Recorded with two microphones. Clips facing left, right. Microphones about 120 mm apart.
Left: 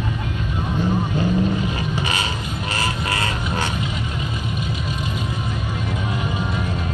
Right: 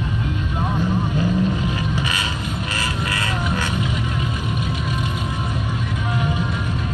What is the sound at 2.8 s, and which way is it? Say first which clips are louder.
Vehicle: left 3 dB; 40° left (ahead or behind).